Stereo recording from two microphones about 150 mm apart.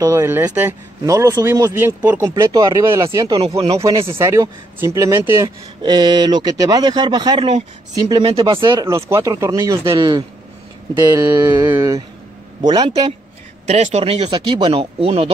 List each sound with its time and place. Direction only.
0.0 s speech: 20° right (ahead or behind)
3.3 s speech: 40° right (ahead or behind)
4.2 s speech: 20° right (ahead or behind)
5.8 s speech: 30° right (ahead or behind)
8.8 s speech: 20° right (ahead or behind)
11.1 s speech: 20° right (ahead or behind)
12.6 s speech: 30° right (ahead or behind)
13.7 s speech: 45° right (ahead or behind)